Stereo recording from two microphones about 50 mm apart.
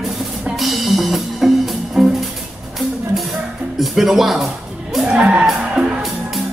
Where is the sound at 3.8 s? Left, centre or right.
Centre.